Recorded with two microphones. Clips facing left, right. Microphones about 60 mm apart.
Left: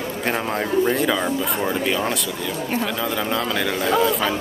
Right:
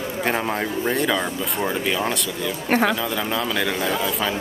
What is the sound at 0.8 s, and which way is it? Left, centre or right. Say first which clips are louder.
Speech: left 2 dB; centre.